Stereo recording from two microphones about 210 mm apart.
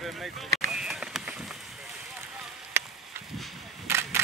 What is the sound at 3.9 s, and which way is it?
Single-lens reflex camera, 10° right (ahead or behind).